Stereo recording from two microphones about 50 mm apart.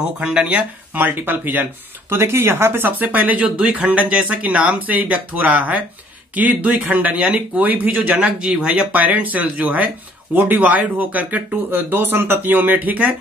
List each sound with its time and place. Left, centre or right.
0.2 s speech: right
0.5 s speech: right
2.0 s speech: right
8.2 s speech: right